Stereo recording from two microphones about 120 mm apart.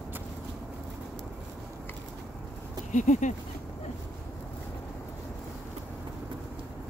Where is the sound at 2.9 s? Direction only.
90° left.